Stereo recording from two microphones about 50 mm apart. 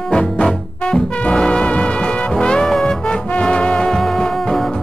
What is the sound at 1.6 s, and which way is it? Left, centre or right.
Music, left.